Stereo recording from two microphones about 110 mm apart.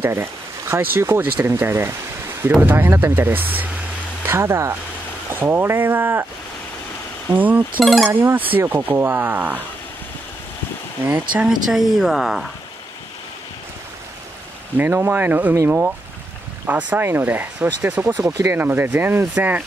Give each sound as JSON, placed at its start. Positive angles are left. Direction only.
{"t": 0.0, "sound": "speech", "side_deg": -20}
{"t": 7.3, "sound": "speech", "side_deg": -15}
{"t": 7.8, "sound": "speech", "side_deg": 0}
{"t": 8.1, "sound": "speech", "side_deg": -20}
{"t": 11.1, "sound": "speech", "side_deg": -15}
{"t": 11.7, "sound": "speech", "side_deg": -5}
{"t": 14.8, "sound": "speech", "side_deg": -20}
{"t": 16.6, "sound": "speech", "side_deg": -15}